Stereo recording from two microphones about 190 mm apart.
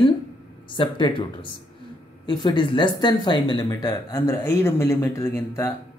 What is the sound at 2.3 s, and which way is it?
Speech, 25° left (ahead or behind).